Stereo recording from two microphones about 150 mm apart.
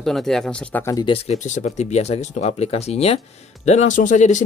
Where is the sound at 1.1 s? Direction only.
50° left (ahead or behind).